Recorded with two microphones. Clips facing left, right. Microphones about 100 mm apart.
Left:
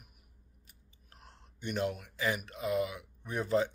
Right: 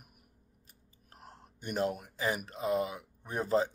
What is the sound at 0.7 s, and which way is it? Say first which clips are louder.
A man's voice: right 2 dB; 40° right (ahead or behind).